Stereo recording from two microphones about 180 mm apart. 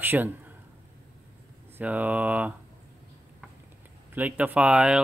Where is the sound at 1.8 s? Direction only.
10° right (ahead or behind).